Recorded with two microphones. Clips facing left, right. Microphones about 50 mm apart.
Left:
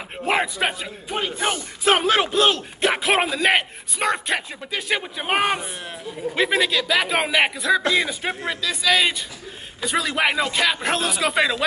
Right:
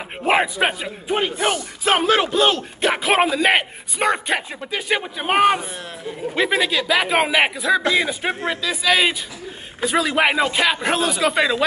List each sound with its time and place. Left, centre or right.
0.2 s a man's voice: centre
1.1 s speech: right
2.3 s a man's voice: centre